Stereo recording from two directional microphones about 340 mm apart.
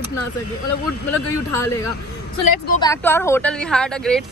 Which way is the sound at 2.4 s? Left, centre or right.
Left.